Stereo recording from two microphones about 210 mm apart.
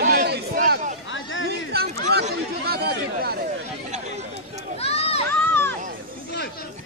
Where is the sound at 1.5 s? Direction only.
50° right (ahead or behind).